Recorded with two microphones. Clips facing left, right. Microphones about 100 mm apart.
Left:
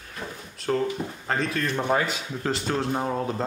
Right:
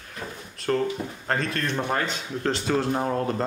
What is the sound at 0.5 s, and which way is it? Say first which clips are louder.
Speech: right 1 dB; centre (ahead or behind).